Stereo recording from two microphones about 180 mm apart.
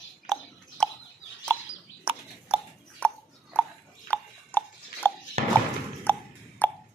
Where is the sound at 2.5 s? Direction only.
5° right (ahead or behind).